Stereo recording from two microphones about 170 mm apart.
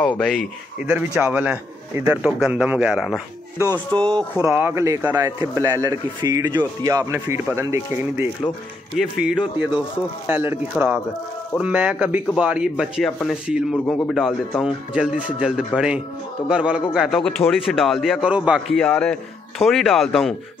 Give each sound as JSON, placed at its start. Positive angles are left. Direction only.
{"t": 0.0, "sound": "speech", "side_deg": 5}
{"t": 0.7, "sound": "a man's voice", "side_deg": -10}
{"t": 3.5, "sound": "a man's voice", "side_deg": -15}
{"t": 4.1, "sound": "speech", "side_deg": 10}
{"t": 4.5, "sound": "a man's voice", "side_deg": -15}
{"t": 8.9, "sound": "a man's voice", "side_deg": -5}